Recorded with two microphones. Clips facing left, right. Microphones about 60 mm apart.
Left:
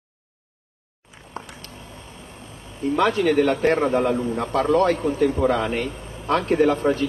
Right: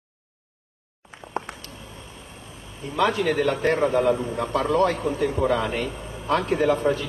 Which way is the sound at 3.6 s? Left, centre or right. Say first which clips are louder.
Left 1 dB; left.